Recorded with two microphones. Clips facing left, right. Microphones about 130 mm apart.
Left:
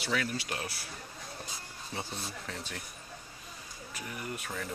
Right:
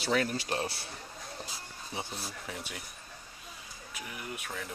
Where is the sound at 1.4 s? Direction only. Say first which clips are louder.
Right 1 dB; 5° right (ahead or behind).